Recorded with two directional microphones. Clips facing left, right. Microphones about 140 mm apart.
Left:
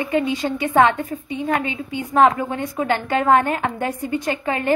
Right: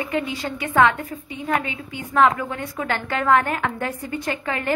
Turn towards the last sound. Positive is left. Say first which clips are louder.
# left 3 dB
turn(degrees=20)  # may be behind; listen again after turning